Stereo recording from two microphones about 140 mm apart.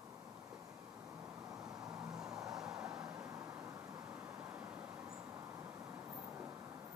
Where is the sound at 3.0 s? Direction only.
25° right (ahead or behind).